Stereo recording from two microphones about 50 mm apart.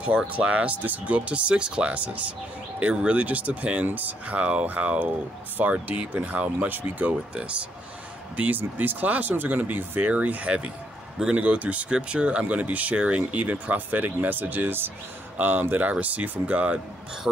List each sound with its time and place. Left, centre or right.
0.3 s speech: right
7.3 s speech: right
8.4 s speech: right